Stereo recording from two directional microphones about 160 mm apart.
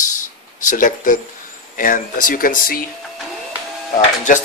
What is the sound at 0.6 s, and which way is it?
Speech, 55° left (ahead or behind).